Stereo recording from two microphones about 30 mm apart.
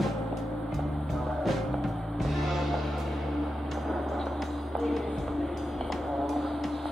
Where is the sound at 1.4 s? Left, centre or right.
Centre.